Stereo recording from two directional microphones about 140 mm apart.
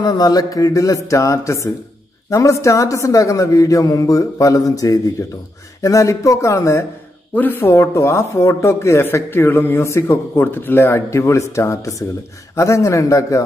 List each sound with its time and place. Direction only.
0.0 s speech: 30° left (ahead or behind)